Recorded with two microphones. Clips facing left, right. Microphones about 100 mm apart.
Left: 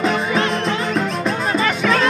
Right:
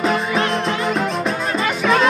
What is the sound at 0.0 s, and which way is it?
Music, centre (ahead or behind).